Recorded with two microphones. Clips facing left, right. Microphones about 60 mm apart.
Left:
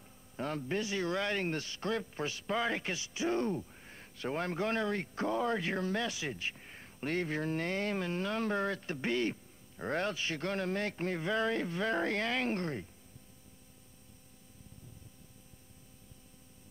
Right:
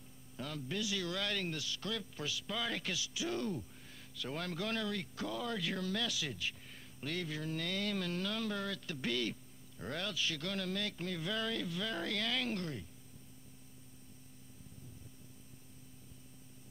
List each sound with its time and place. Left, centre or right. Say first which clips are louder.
0.4 s a man's voice: left 5 dB; left